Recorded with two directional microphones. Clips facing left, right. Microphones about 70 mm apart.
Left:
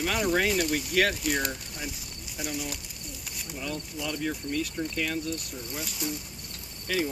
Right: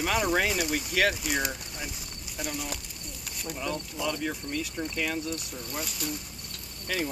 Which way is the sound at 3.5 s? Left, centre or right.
Centre.